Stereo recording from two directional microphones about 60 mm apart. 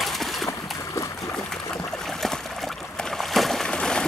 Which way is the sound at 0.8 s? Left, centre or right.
Left.